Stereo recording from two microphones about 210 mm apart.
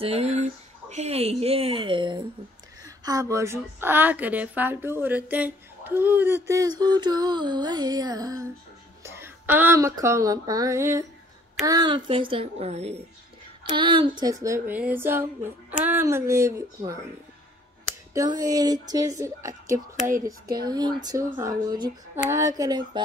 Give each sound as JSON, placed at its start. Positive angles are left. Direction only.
{"t": 0.0, "sound": "a woman's voice", "side_deg": -30}
{"t": 18.1, "sound": "a woman's voice", "side_deg": -20}